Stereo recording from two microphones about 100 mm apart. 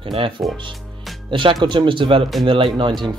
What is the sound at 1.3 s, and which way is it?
Speech, 55° right (ahead or behind).